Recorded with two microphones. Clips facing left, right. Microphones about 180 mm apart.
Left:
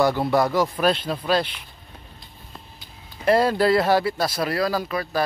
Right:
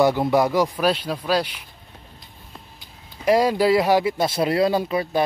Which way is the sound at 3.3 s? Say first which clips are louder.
Right 1 dB; 10° right (ahead or behind).